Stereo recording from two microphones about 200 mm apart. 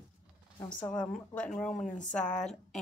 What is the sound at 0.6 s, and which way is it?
Speech, 20° left (ahead or behind).